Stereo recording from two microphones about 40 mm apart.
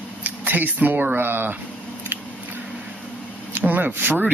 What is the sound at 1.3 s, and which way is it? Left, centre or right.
Speech, right.